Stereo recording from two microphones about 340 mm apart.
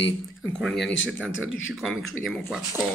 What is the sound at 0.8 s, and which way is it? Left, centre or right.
Speech, left.